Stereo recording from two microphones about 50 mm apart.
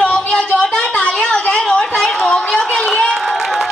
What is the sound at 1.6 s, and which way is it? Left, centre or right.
Chatter, centre.